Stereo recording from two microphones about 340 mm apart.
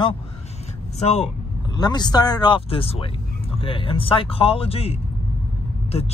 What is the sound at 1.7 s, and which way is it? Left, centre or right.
Speech, centre.